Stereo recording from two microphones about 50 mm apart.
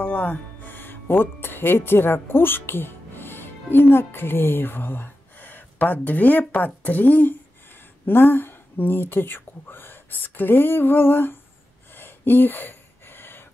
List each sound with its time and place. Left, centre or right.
0.0 s speech: left
12.0 s gasp: left